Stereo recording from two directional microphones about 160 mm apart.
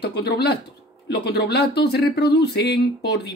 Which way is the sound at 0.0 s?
85° left.